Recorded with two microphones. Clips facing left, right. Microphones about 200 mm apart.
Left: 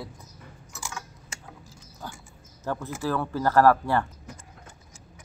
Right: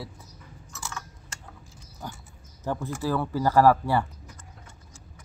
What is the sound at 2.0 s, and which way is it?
Speech, 15° right (ahead or behind).